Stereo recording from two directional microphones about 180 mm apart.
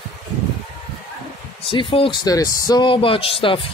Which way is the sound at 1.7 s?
30° left (ahead or behind).